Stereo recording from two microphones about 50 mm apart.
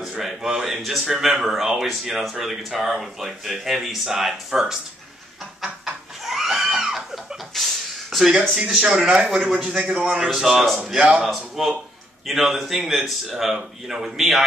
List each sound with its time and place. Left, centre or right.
0.1 s speech: centre
6.2 s a sound: centre
8.6 s a man's voice: centre
10.9 s a man's voice: centre
11.2 s a man's voice: centre